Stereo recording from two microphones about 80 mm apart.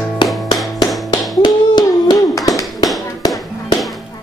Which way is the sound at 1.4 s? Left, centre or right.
Left.